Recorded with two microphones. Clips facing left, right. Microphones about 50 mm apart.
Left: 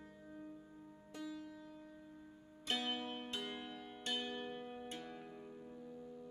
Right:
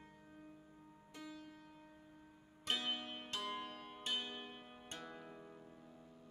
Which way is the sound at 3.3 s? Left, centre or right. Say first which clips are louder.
Right 1 dB; right.